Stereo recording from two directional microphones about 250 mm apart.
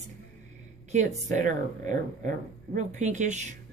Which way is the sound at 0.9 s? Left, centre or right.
Right.